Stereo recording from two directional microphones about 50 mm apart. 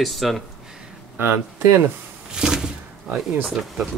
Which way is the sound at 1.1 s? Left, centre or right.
Right.